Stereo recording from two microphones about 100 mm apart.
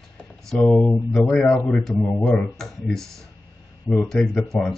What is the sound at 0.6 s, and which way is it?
Speech, 10° left (ahead or behind).